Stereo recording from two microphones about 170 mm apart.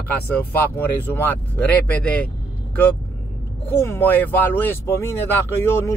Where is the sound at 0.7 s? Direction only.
10° left (ahead or behind).